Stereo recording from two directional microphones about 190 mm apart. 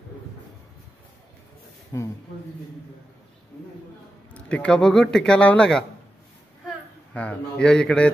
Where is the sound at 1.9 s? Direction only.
15° left (ahead or behind).